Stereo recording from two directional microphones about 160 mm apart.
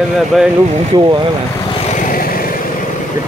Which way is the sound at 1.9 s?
65° left (ahead or behind).